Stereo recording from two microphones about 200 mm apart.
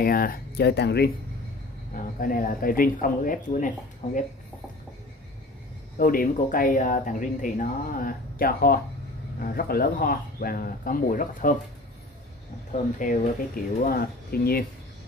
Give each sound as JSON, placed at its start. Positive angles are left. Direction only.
{"t": 0.0, "sound": "speech", "side_deg": 45}
{"t": 2.1, "sound": "speech", "side_deg": 45}
{"t": 5.9, "sound": "speech", "side_deg": 45}
{"t": 13.0, "sound": "speech", "side_deg": 40}